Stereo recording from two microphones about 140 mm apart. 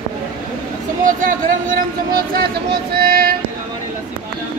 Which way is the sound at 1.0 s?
70° right (ahead or behind).